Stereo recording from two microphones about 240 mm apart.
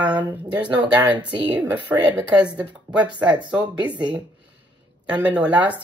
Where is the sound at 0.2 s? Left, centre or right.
Centre.